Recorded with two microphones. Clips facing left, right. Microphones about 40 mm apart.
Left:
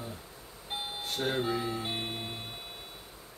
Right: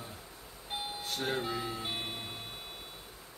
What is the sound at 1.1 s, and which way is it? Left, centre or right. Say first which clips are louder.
Speech: left 4 dB; centre.